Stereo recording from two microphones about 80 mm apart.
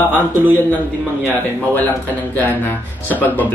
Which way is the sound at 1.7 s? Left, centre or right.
Left.